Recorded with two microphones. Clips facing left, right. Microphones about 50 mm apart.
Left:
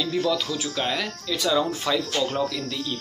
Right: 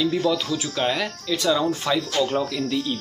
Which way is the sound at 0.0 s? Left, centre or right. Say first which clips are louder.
Right 2 dB; centre.